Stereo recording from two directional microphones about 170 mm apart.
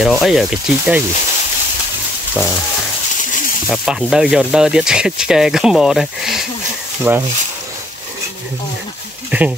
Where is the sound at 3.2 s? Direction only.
50° left (ahead or behind).